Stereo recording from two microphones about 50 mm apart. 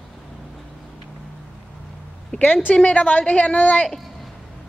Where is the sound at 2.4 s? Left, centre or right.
Left.